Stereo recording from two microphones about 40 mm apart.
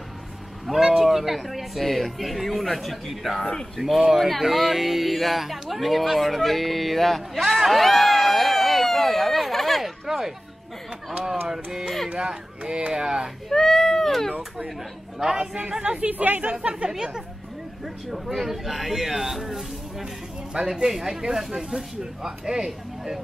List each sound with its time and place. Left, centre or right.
0.7 s speech: centre
3.8 s speech: centre
4.2 s speech: centre
11.4 s speech: centre
12.1 s speech: right
13.5 s speech: centre
15.8 s speech: right
16.1 s speech: right
16.9 s speech: centre
17.8 s speech: centre
20.5 s speech: centre
20.8 s speech: centre